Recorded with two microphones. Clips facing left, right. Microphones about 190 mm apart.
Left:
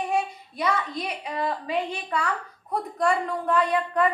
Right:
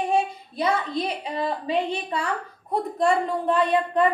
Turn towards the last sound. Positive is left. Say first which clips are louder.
# right 2 dB
turn(degrees=-25)  # may be behind; listen again after turning